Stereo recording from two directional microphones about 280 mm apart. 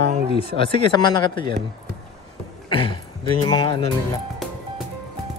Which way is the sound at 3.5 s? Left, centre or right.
Centre.